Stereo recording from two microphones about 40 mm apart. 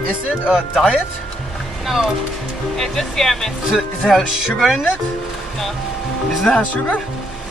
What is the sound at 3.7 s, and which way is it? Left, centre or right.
Speech, centre.